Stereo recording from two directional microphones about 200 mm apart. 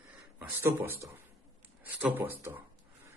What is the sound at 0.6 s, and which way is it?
A man's voice, 10° right (ahead or behind).